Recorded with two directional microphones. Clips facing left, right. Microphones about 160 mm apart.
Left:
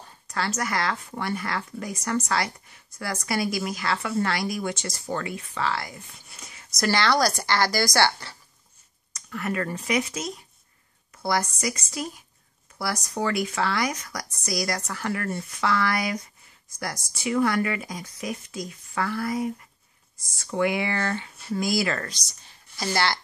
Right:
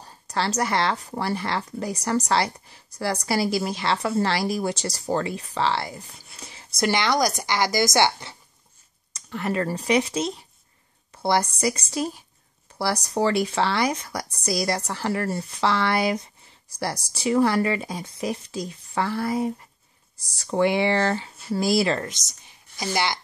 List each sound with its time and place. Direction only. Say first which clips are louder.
0.0 s speech: right 3 dB; 35° right (ahead or behind); by 23.1 s 15° right (ahead or behind)